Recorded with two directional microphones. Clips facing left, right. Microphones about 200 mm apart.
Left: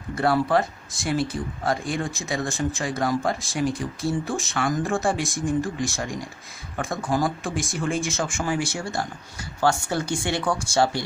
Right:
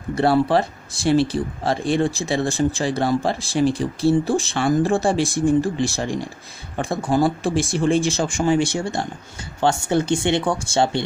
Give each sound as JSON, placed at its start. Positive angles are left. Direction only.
{"t": 0.1, "sound": "speech", "side_deg": -30}